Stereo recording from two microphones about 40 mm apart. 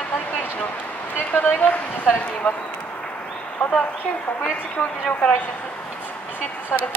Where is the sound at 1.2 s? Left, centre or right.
Left.